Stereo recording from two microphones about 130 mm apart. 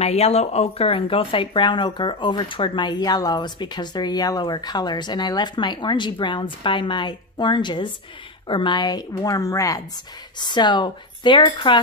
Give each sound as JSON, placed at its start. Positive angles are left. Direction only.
{"t": 0.0, "sound": "speech", "side_deg": 55}